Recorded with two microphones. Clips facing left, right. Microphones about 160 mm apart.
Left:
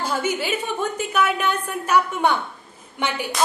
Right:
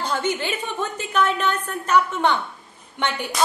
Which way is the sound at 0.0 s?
10° left (ahead or behind).